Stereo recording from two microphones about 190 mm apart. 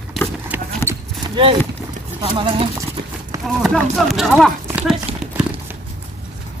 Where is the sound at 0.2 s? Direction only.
Centre (ahead or behind).